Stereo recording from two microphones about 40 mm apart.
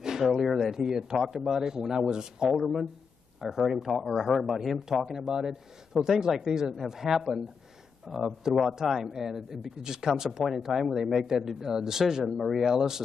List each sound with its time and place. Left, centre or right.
0.2 s speech: centre
2.5 s speech: centre
4.7 s speech: centre